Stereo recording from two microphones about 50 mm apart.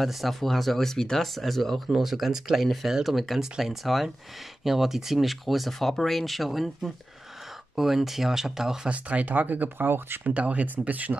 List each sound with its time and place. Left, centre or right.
0.0 s speech: centre
8.8 s speech: right
10.3 s speech: right